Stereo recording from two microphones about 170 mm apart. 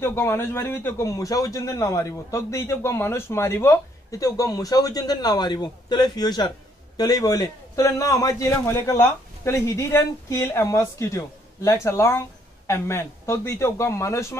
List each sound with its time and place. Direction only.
0.0 s a man's voice: 15° left (ahead or behind)